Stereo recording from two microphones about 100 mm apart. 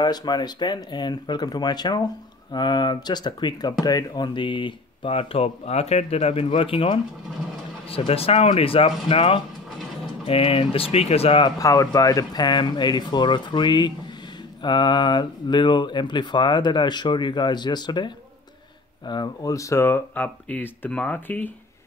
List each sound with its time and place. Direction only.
0.0 s speech: 45° left (ahead or behind); by 7.0 s 60° left (ahead or behind)
8.1 s speech: 80° left
11.5 s speech: 35° left (ahead or behind)
19.5 s speech: 30° left (ahead or behind); by 21.5 s 15° left (ahead or behind)